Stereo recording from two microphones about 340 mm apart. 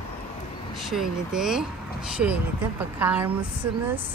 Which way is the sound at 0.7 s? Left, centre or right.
Centre.